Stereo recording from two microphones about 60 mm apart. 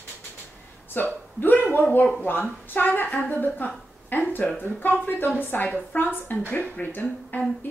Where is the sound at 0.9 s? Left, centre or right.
Left.